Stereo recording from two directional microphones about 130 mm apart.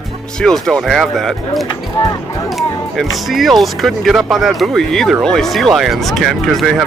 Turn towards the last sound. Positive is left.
turn(degrees=0)  # may be behind; listen again after turning